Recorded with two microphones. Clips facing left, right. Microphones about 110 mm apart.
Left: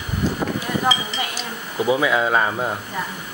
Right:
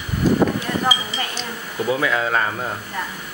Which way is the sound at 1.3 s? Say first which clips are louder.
Even; 15° left (ahead or behind).